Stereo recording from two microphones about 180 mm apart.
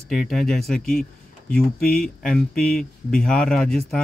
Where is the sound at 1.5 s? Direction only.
55° left (ahead or behind).